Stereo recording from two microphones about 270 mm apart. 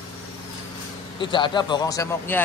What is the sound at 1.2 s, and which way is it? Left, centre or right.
Speech, centre.